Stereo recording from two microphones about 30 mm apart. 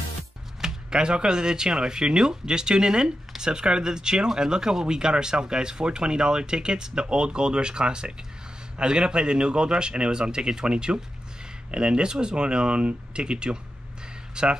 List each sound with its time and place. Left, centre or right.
0.6 s speech: right